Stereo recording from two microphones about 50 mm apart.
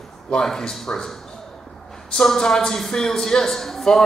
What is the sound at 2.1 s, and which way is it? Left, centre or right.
Speech, centre.